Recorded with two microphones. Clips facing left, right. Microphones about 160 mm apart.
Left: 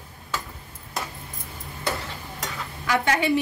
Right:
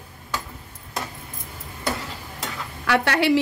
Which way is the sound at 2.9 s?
75° right (ahead or behind).